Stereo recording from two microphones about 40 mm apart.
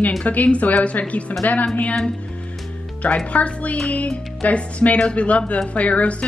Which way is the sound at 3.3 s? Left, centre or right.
Left.